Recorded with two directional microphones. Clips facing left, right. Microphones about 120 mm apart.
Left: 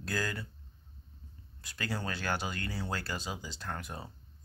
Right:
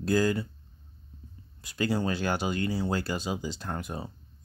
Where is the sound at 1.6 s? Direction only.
15° right (ahead or behind).